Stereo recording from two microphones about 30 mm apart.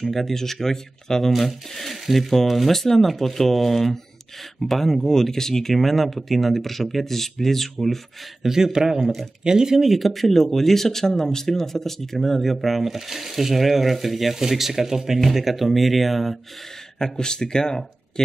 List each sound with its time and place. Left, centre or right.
0.2 s speech: centre
1.4 s speech: centre
8.4 s speech: centre
9.0 s speech: centre
9.4 s speech: right
9.8 s speech: centre
17.0 s speech: centre